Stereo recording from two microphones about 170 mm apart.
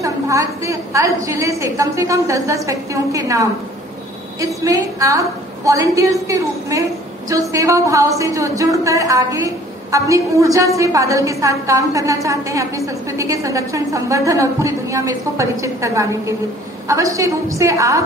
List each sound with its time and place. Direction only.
0.0 s a woman's voice: 20° right (ahead or behind)
4.6 s a woman's voice: 20° right (ahead or behind)